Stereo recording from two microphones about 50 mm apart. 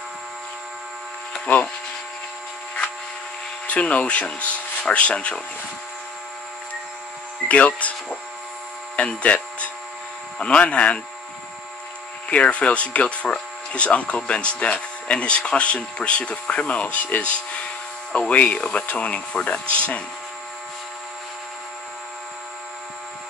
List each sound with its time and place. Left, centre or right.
3.6 s speech: left
7.4 s speech: left
8.9 s a sound: left
10.4 s speech: left
12.3 s speech: left